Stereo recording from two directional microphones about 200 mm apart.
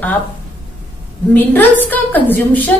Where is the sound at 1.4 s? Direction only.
10° left (ahead or behind).